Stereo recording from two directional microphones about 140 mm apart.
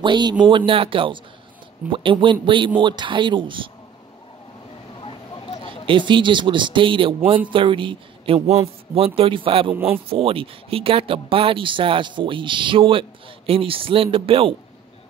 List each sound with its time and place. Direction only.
0.0 s speech: 30° right (ahead or behind)
4.9 s a sound: 35° left (ahead or behind)
5.9 s speech: 35° right (ahead or behind)
9.8 s speech: 15° right (ahead or behind)
10.0 s speech: 40° right (ahead or behind)